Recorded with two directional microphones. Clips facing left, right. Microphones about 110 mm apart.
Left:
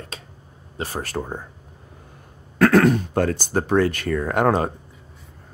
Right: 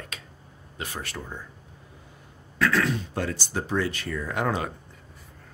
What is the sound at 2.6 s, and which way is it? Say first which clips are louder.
Speech: left 9 dB; 50° left (ahead or behind).